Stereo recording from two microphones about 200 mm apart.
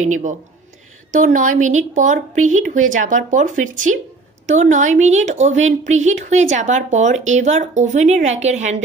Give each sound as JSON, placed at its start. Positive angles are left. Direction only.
{"t": 0.0, "sound": "a woman's voice", "side_deg": -40}